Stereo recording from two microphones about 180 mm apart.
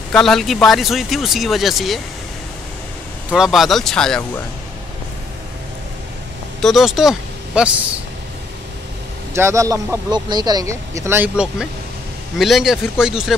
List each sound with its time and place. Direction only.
0.1 s speech: 5° left (ahead or behind)
3.3 s speech: 5° right (ahead or behind)
6.6 s speech: centre (ahead or behind)
9.3 s speech: 15° right (ahead or behind)